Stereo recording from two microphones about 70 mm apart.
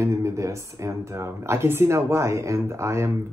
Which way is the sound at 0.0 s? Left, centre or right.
Right.